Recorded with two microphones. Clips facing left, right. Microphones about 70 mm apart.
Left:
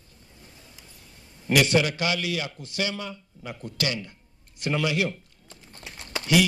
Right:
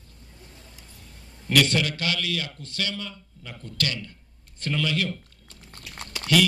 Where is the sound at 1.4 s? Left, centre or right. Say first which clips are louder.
Left 2 dB; centre.